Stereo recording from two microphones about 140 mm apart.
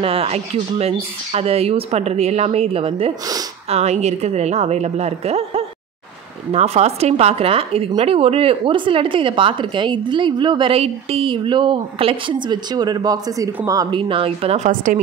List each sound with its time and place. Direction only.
0.0 s speech: 45° right (ahead or behind)